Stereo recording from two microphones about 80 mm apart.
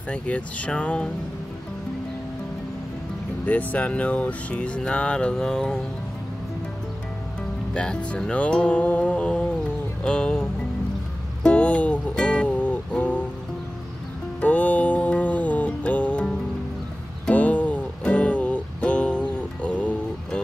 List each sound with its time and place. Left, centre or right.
0.1 s speech: centre
3.4 s speech: centre
7.7 s speech: centre
10.0 s music: centre
11.4 s music: centre
14.4 s music: centre